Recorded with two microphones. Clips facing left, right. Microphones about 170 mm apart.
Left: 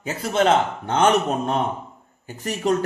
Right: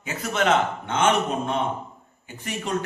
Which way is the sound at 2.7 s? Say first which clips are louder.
Left 7 dB; 40° left (ahead or behind).